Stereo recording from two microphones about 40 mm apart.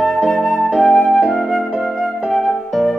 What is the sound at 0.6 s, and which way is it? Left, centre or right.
Flute, centre.